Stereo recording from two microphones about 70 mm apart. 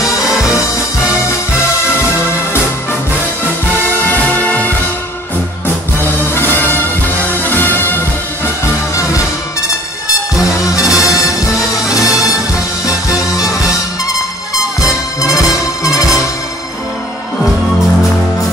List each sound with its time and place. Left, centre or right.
4.1 s music: left
6.3 s music: left
10.8 s music: left
15.2 s music: left